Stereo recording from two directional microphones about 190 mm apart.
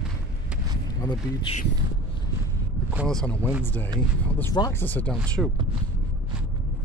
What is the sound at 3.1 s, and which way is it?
Speech, 5° left (ahead or behind).